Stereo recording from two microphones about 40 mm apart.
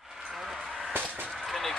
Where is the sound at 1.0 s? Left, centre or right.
Right.